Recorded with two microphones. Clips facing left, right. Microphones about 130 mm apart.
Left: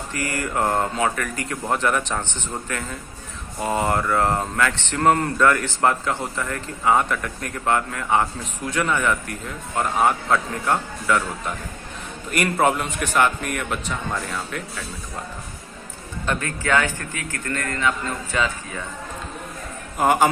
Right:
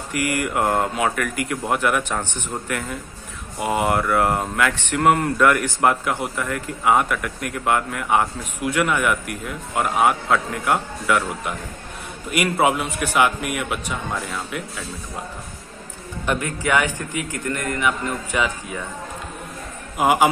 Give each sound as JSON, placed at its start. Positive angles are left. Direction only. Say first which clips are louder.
{"t": 0.1, "sound": "speech", "louder": "right 4 dB", "side_deg": -15}
{"t": 16.3, "sound": "speech", "louder": "right 1 dB", "side_deg": -15}
{"t": 20.0, "sound": "speech", "louder": "right 1 dB", "side_deg": -10}